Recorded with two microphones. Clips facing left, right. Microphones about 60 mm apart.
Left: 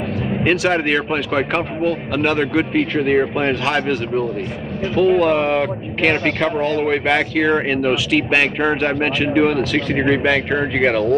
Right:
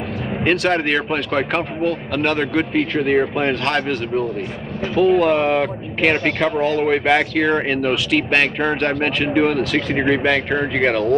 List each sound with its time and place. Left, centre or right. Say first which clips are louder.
0.4 s speech: even; centre